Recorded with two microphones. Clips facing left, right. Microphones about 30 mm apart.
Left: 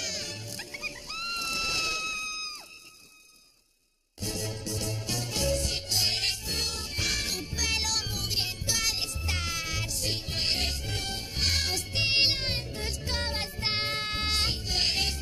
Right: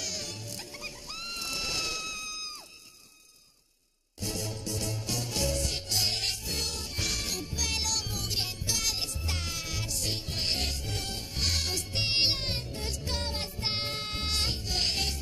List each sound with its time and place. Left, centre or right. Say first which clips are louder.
0.0 s music: left 2 dB; left
4.2 s music: left 1 dB; centre